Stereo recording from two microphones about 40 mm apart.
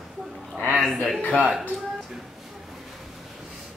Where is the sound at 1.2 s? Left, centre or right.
Left.